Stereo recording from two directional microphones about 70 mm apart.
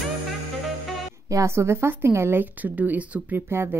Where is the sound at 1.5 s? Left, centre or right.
Right.